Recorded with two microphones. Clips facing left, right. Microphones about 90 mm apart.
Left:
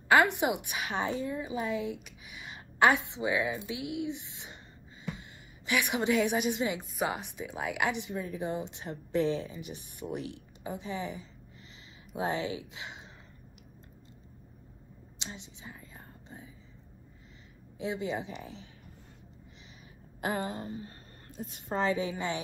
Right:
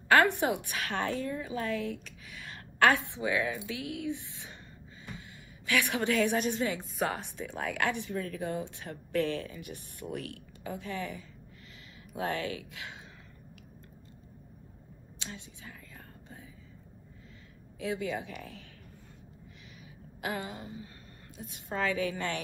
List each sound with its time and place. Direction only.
0.1 s a woman's voice: 15° left (ahead or behind)
5.7 s a woman's voice: 15° left (ahead or behind)
15.1 s whispering: 20° left (ahead or behind)
17.7 s speech: 25° left (ahead or behind)
20.2 s a woman's voice: 35° left (ahead or behind); by 22.4 s 15° left (ahead or behind)